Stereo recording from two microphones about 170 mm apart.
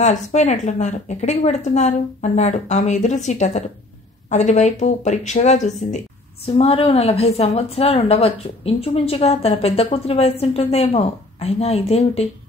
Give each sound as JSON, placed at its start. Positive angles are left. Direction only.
{"t": 0.0, "sound": "a woman's voice", "side_deg": 45}